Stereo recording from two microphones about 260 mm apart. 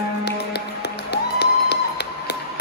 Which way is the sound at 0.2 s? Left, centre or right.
Left.